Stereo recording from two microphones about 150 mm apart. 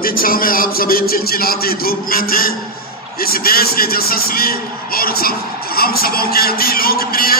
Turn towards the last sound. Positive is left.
turn(degrees=80)